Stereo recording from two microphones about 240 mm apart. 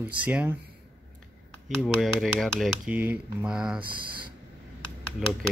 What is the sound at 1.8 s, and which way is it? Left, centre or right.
Speech, centre.